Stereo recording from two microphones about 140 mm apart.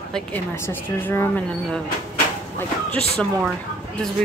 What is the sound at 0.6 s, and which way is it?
Speech, 15° left (ahead or behind).